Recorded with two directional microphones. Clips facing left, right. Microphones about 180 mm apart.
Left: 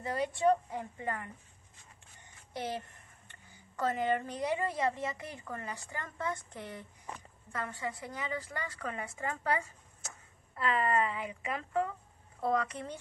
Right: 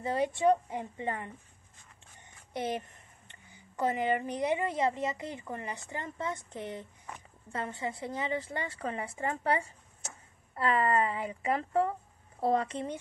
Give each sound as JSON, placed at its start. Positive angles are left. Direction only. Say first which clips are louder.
{"t": 0.0, "sound": "a woman's voice", "louder": "right 2 dB", "side_deg": -25}
{"t": 2.5, "sound": "a woman's voice", "louder": "right 4 dB", "side_deg": -20}